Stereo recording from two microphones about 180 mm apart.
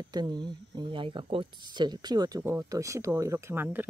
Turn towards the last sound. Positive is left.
turn(degrees=-10)  # may be behind; listen again after turning